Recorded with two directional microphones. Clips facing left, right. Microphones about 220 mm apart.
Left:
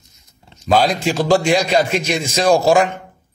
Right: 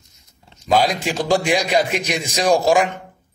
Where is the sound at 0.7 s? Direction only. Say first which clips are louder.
Left 2 dB; 15° right (ahead or behind).